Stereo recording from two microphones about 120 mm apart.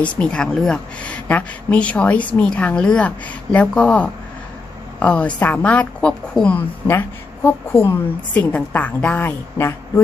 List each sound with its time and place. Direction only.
0.0 s a woman's voice: 10° left (ahead or behind)